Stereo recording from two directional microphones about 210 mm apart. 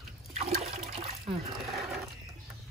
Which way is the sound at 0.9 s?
30° right (ahead or behind).